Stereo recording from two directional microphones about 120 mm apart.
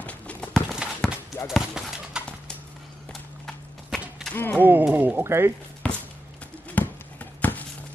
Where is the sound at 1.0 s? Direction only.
5° left (ahead or behind).